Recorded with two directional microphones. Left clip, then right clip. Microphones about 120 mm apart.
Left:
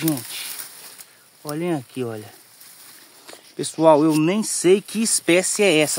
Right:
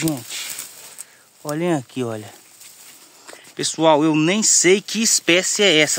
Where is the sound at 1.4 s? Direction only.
35° right (ahead or behind).